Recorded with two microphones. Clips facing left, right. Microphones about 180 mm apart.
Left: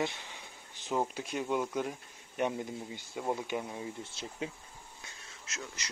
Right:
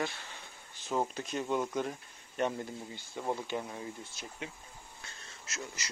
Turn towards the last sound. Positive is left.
turn(degrees=-5)  # may be behind; listen again after turning